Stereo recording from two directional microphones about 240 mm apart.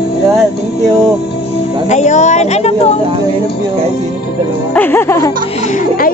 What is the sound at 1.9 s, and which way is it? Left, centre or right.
Music, left.